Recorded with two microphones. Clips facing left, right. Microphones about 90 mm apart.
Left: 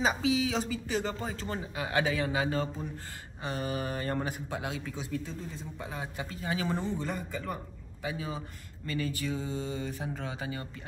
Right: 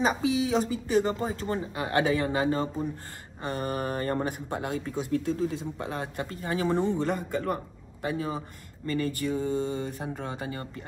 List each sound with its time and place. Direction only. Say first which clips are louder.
0.2 s speech: right 3 dB; 40° right (ahead or behind)
3.4 s speech: right 3 dB; 45° right (ahead or behind)
5.2 s speech: right 12 dB; 90° right
5.8 s speech: right 5 dB; 60° right (ahead or behind); by 6.8 s 40° right (ahead or behind)
6.8 s a man's voice: right 7 dB; centre (ahead or behind)
7.3 s speech: right 7 dB; 60° right (ahead or behind)